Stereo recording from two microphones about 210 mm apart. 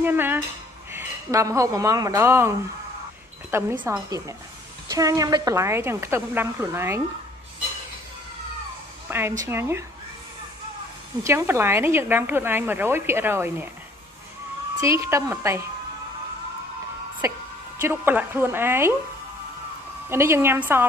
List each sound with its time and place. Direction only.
0.0 s a woman's voice: 10° right (ahead or behind)
3.5 s a woman's voice: 10° right (ahead or behind)
9.1 s a woman's voice: 10° right (ahead or behind)
11.2 s a woman's voice: 10° right (ahead or behind)
14.8 s a woman's voice: 15° right (ahead or behind)
17.2 s a woman's voice: 15° right (ahead or behind)
20.1 s a woman's voice: 10° right (ahead or behind)